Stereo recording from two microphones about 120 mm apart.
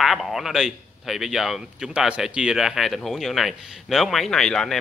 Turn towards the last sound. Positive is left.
turn(degrees=5)  # may be behind; listen again after turning